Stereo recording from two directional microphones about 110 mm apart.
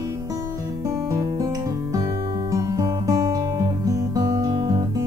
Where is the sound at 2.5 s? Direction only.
30° right (ahead or behind).